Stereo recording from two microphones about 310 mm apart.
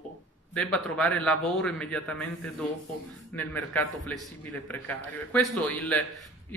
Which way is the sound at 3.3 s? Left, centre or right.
Centre.